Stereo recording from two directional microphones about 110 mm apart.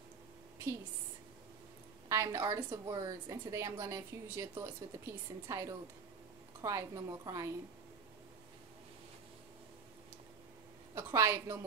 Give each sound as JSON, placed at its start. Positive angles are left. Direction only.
{"t": 2.0, "sound": "a woman's voice", "side_deg": -25}
{"t": 11.0, "sound": "a woman's voice", "side_deg": -25}